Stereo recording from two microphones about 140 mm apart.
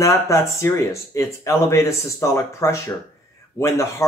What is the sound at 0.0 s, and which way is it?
Speech, 20° left (ahead or behind).